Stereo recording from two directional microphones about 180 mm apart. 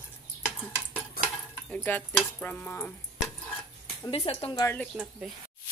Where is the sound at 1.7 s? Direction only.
10° left (ahead or behind).